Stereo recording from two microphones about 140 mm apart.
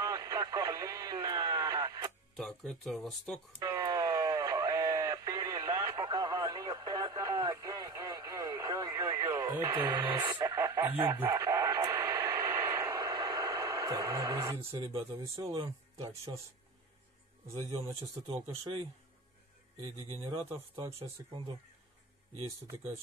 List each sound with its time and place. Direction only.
0.0 s radio: 25° right (ahead or behind)
2.3 s speech: 5° left (ahead or behind)
3.6 s a sound: 25° right (ahead or behind)
10.2 s radio: 20° right (ahead or behind)
14.6 s speech: 40° right (ahead or behind)
18.2 s speech: 45° right (ahead or behind)
19.8 s speech: 35° right (ahead or behind)